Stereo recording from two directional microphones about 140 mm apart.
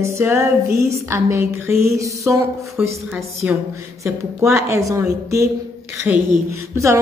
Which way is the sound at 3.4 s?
20° right (ahead or behind).